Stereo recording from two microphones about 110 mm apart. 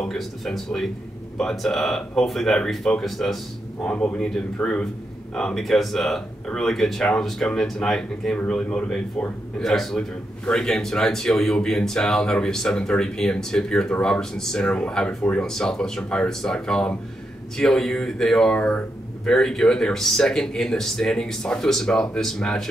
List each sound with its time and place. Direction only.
0.0 s a man's voice: 5° left (ahead or behind)